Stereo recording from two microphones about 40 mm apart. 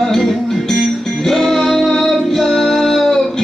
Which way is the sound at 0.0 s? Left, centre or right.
Centre.